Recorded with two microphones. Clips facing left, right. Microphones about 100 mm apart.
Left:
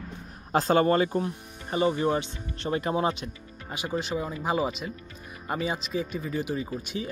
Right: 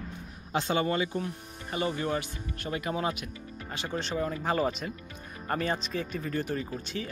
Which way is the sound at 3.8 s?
10° left (ahead or behind).